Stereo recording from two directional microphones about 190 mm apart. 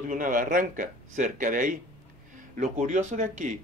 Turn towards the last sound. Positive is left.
turn(degrees=-40)  # may be behind; listen again after turning